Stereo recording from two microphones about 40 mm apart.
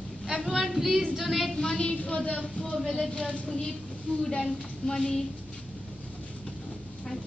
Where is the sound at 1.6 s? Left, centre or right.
Left.